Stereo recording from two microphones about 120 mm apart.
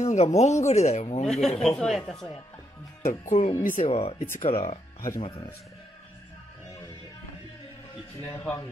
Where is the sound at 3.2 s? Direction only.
65° left (ahead or behind).